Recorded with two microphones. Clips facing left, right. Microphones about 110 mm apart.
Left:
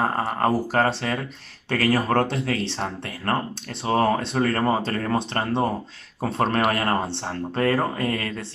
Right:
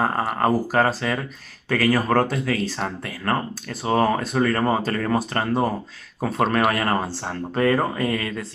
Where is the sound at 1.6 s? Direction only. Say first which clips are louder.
Right 1 dB; 30° left (ahead or behind).